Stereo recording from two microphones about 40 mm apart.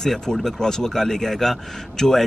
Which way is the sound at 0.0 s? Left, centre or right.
Centre.